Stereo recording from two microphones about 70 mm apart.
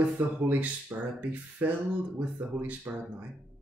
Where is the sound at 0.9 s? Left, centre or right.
Right.